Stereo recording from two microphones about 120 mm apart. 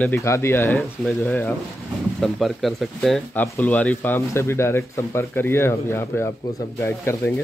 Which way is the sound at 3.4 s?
15° left (ahead or behind).